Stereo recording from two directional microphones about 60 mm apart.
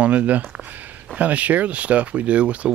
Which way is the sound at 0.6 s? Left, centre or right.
Right.